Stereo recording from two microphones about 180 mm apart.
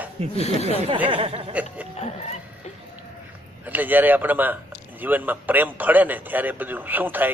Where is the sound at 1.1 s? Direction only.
30° right (ahead or behind).